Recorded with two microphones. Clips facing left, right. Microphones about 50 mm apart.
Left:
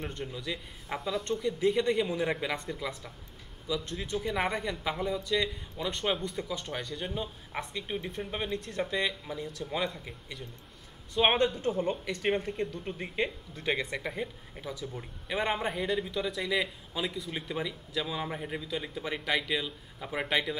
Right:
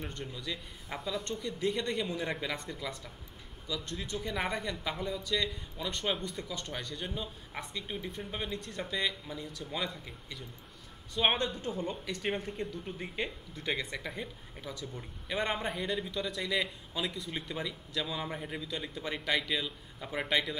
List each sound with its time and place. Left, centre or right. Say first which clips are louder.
0.0 s speech: left 3 dB; centre
11.1 s speech: left 4 dB; centre
11.8 s speech: left 5 dB; left
12.9 s speech: left 6 dB; centre
13.7 s speech: left 4 dB; centre